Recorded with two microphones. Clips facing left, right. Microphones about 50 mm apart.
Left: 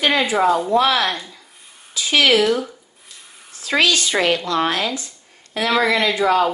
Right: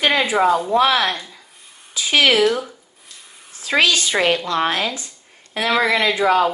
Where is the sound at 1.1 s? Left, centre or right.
Centre.